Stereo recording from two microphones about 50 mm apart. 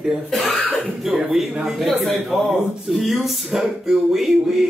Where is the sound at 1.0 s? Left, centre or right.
Centre.